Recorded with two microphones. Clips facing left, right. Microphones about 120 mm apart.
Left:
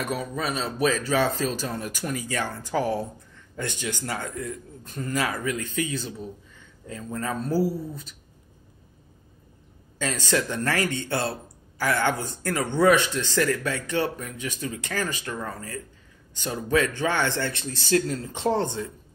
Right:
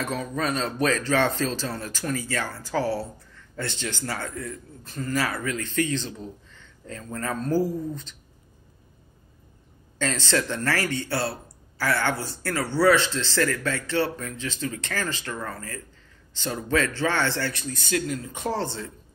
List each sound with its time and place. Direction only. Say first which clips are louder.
0.0 s speech: right 1 dB; 10° left (ahead or behind)
9.9 s a man's voice: even; 10° left (ahead or behind)